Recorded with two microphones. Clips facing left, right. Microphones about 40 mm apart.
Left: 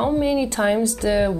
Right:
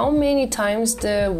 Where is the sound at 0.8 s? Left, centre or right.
Left.